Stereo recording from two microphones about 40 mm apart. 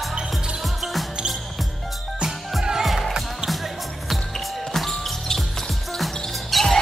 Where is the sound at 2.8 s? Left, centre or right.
Centre.